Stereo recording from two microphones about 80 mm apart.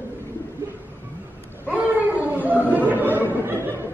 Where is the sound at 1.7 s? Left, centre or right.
Centre.